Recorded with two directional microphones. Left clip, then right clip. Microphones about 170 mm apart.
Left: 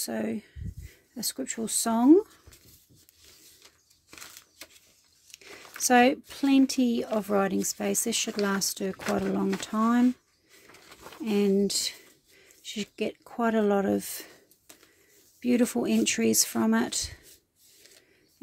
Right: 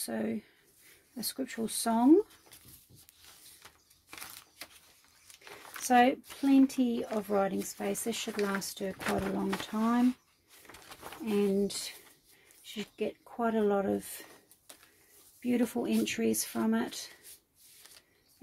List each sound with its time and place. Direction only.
0.0 s speech: 40° left (ahead or behind)
5.9 s speech: 55° left (ahead or behind)
11.2 s speech: 50° left (ahead or behind)
15.4 s speech: 55° left (ahead or behind)